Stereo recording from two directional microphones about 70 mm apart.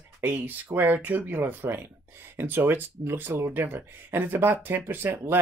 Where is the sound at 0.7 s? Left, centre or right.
Right.